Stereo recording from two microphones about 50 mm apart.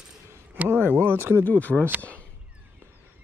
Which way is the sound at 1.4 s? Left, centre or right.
Left.